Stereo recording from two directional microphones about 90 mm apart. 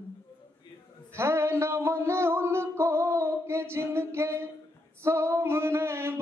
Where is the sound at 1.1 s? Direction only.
30° right (ahead or behind).